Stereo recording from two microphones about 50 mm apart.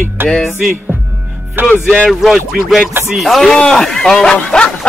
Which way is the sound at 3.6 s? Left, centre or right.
Centre.